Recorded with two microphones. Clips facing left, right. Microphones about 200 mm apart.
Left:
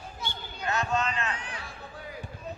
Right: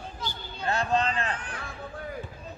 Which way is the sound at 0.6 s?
30° right (ahead or behind).